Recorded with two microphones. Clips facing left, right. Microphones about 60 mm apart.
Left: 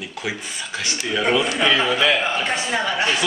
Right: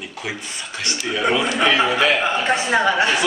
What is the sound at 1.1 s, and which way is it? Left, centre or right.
Speech, centre.